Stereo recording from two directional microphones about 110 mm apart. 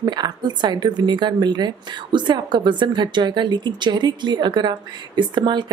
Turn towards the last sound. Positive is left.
turn(degrees=-45)  # may be behind; listen again after turning